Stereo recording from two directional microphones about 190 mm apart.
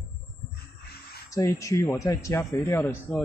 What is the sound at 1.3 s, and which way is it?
Speech, 15° left (ahead or behind).